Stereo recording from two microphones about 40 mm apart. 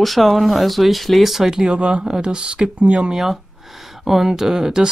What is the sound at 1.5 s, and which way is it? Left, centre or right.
Speech, centre.